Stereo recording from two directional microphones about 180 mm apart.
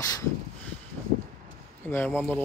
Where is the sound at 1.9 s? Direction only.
10° left (ahead or behind).